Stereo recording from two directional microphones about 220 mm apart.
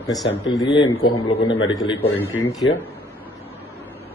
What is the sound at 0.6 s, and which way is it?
A man's voice, 20° left (ahead or behind).